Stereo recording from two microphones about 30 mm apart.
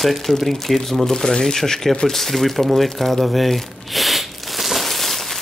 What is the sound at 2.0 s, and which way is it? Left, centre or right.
Crumpling, centre.